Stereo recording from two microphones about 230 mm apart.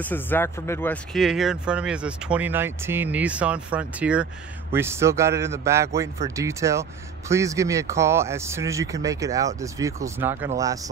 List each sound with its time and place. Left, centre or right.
0.0 s speech: centre
1.1 s speech: centre